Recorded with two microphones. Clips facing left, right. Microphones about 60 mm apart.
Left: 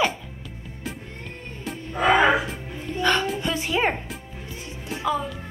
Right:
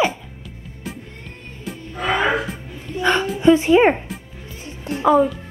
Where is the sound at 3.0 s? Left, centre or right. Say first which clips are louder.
Right 6 dB; centre.